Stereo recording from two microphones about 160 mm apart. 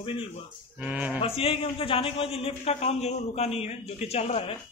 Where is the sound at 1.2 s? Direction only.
35° left (ahead or behind).